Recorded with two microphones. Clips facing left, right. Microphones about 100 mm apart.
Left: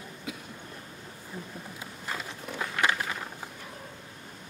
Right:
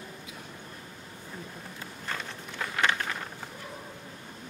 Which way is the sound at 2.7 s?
5° left (ahead or behind).